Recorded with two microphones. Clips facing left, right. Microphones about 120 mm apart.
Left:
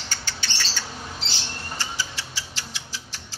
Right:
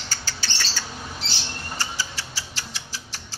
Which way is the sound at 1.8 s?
40° right (ahead or behind).